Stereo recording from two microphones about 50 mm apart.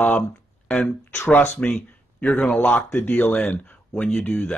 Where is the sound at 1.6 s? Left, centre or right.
Left.